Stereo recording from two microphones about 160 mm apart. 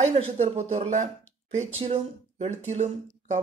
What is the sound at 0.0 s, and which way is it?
Speech, 45° right (ahead or behind).